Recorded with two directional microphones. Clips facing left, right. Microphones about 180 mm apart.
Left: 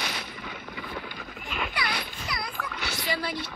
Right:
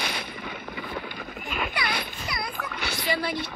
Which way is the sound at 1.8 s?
55° right (ahead or behind).